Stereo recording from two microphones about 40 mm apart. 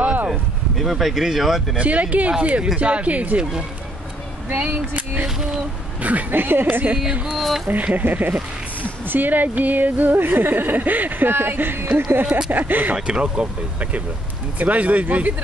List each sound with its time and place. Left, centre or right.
0.0 s a sound: right
0.3 s speech: centre
1.8 s speech: right
6.3 s a woman's voice: right
7.3 s speech: centre
7.7 s speech: right
12.4 s speech: right
12.9 s speech: right
14.6 s speech: right